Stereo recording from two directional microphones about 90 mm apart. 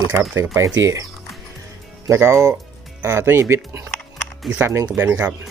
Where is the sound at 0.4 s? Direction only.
35° right (ahead or behind).